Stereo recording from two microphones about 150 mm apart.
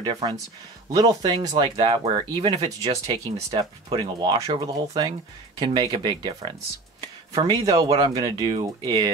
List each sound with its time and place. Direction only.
0.0 s speech: 30° right (ahead or behind)